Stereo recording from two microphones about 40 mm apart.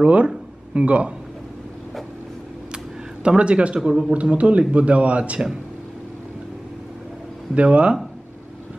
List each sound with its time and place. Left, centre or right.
0.0 s speech: right
3.3 s a man's voice: right
7.5 s a man's voice: right